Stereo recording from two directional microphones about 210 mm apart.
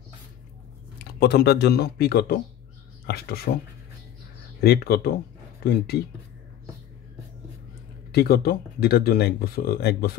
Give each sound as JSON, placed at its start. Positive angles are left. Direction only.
{"t": 1.2, "sound": "speech", "side_deg": 50}
{"t": 4.6, "sound": "speech", "side_deg": 45}
{"t": 8.1, "sound": "speech", "side_deg": 45}